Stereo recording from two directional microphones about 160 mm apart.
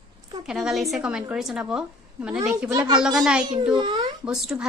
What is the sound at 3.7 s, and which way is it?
Speech, 30° right (ahead or behind).